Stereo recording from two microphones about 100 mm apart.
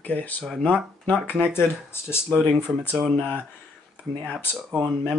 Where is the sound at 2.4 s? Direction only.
20° right (ahead or behind).